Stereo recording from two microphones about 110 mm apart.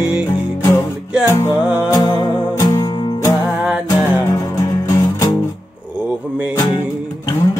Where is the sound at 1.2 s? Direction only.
30° left (ahead or behind).